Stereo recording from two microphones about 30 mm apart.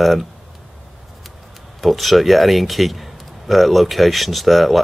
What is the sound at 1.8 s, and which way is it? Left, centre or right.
Speech, centre.